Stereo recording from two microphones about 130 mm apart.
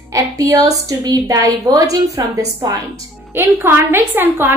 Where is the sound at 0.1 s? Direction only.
25° right (ahead or behind).